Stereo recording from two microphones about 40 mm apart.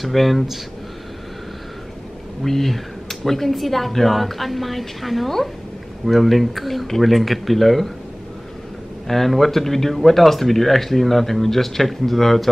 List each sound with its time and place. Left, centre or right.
0.0 s speech: centre
2.4 s speech: centre
9.0 s speech: centre